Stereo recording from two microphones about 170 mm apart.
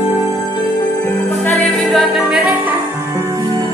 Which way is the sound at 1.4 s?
10° left (ahead or behind).